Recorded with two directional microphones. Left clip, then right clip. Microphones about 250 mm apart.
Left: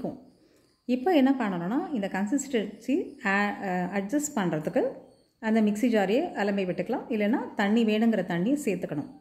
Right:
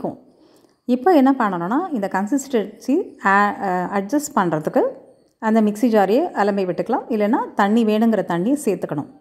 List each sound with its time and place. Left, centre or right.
1.1 s a woman's voice: right